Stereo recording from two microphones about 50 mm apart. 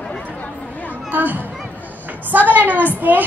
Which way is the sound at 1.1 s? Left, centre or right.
Right.